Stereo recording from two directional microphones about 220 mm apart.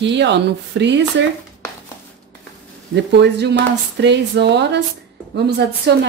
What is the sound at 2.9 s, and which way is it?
Speech, 50° right (ahead or behind).